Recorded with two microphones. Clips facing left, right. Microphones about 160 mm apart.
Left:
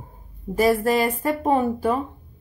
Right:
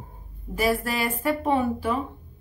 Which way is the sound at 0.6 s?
40° left (ahead or behind).